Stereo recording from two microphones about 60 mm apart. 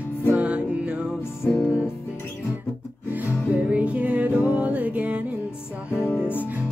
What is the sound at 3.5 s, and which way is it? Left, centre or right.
Music, right.